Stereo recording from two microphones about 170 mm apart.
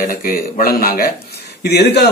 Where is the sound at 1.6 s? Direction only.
75° left (ahead or behind).